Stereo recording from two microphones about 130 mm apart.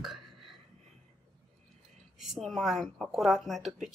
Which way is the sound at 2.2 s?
Centre (ahead or behind).